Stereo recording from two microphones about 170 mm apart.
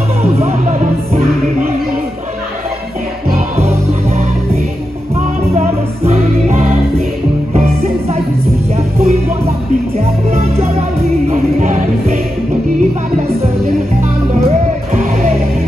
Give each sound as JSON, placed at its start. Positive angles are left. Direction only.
{"t": 0.2, "sound": "music", "side_deg": -40}
{"t": 3.3, "sound": "music", "side_deg": -40}
{"t": 6.0, "sound": "music", "side_deg": -40}